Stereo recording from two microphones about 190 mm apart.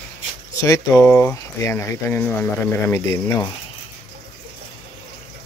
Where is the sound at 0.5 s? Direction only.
15° left (ahead or behind).